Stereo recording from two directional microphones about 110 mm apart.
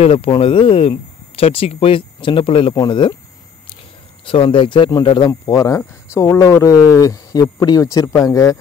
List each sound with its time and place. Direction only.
0.0 s speech: 55° left (ahead or behind)
2.7 s speech: 40° left (ahead or behind)
4.3 s speech: 50° left (ahead or behind); by 8.5 s 30° left (ahead or behind)